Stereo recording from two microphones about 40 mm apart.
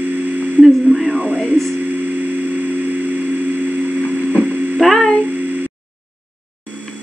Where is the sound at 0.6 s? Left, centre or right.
Centre.